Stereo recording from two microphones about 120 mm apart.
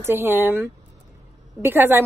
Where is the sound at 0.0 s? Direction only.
20° right (ahead or behind).